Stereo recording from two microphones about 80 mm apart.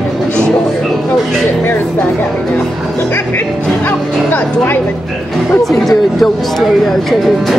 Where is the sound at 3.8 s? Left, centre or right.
Left.